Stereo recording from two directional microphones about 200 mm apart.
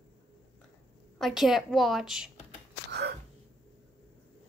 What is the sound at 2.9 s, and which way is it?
Gasp, 55° right (ahead or behind).